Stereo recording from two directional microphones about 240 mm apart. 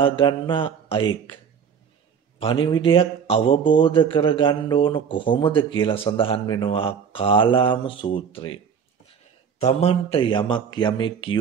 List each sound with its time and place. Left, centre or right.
0.0 s a man's voice: left
9.6 s a man's voice: left